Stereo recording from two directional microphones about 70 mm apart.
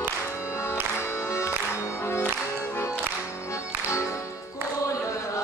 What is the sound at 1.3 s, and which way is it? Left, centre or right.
Music, left.